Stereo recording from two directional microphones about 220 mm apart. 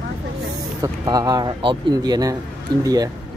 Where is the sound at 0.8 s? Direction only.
15° right (ahead or behind).